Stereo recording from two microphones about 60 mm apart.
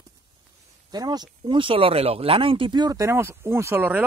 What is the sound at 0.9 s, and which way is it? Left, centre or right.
Speech, right.